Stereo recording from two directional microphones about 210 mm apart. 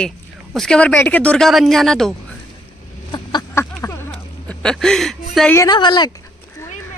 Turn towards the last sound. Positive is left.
turn(degrees=20)  # may be behind; listen again after turning